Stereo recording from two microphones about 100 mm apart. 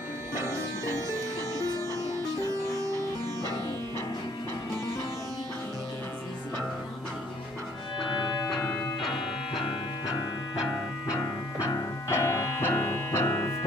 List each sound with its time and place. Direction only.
0.3 s music: 25° right (ahead or behind)
11.7 s music: 30° left (ahead or behind)